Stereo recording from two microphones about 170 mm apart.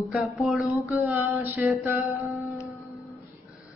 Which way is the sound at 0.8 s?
10° right (ahead or behind).